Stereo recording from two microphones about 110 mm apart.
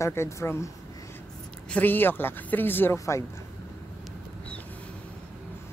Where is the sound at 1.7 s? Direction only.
15° left (ahead or behind).